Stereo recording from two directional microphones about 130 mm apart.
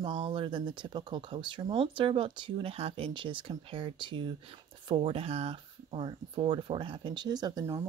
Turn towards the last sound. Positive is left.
turn(degrees=-30)  # may be behind; listen again after turning